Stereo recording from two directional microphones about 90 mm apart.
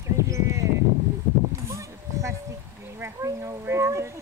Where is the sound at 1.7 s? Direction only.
35° right (ahead or behind).